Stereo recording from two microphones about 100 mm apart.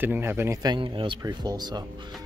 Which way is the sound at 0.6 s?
50° right (ahead or behind).